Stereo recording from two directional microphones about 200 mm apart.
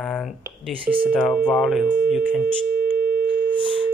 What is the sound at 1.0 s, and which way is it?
Speech, centre (ahead or behind).